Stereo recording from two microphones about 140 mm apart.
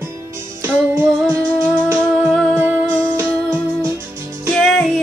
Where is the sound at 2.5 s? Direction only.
15° right (ahead or behind).